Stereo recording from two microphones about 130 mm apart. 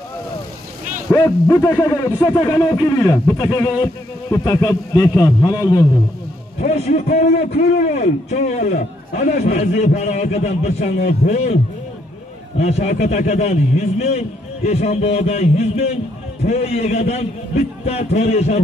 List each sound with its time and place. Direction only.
1.1 s speech: 20° left (ahead or behind)
6.6 s a man's voice: 65° left (ahead or behind)
12.5 s a man's voice: 60° left (ahead or behind)